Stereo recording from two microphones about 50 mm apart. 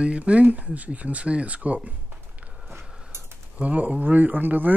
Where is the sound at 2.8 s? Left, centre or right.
Centre.